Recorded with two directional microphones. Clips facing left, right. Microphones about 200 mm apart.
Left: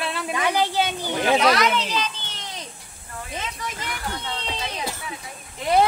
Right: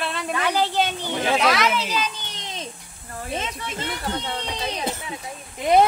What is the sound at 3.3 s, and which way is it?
Speech, 25° right (ahead or behind).